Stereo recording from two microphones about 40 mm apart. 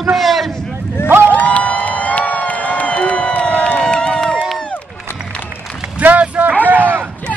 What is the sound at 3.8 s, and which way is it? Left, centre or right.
Crowd, left.